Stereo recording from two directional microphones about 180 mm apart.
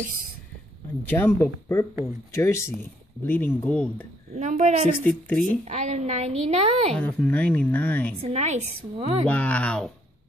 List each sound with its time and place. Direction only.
1.0 s speech: 10° left (ahead or behind)
4.4 s a woman's voice: 40° right (ahead or behind)
5.0 s speech: 10° left (ahead or behind)
5.7 s a woman's voice: 40° right (ahead or behind)
6.9 s speech: 5° left (ahead or behind)
8.2 s a woman's voice: 35° right (ahead or behind)
9.3 s speech: 10° left (ahead or behind)